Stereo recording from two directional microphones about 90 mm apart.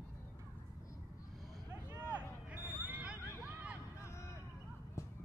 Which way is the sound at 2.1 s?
15° right (ahead or behind).